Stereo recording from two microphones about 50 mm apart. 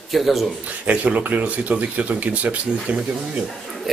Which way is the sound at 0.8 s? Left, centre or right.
Right.